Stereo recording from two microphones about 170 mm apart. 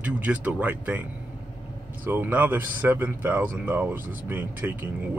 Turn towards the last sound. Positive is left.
turn(degrees=-10)  # may be behind; listen again after turning